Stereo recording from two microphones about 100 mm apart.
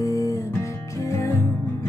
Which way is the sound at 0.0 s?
30° left (ahead or behind).